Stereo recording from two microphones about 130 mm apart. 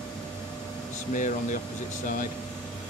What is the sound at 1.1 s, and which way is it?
Speech, 80° left.